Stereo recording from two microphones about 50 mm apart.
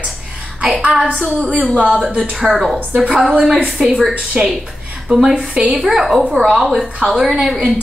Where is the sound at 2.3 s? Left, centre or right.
Centre.